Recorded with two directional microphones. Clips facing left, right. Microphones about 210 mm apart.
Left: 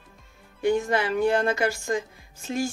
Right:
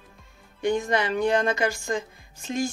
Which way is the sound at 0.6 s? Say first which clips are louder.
Left 1 dB; 5° left (ahead or behind).